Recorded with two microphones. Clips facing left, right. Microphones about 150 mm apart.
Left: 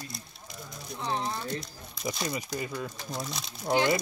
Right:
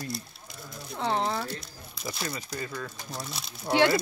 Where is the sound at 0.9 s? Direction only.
65° right (ahead or behind).